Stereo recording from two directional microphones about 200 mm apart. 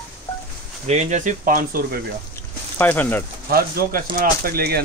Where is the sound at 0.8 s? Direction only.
35° right (ahead or behind).